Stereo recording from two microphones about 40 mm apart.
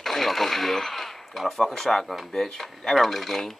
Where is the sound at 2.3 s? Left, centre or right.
Centre.